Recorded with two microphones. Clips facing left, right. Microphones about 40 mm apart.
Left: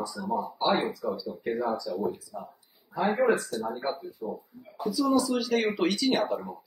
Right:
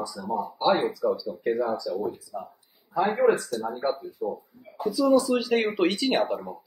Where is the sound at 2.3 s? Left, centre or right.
Centre.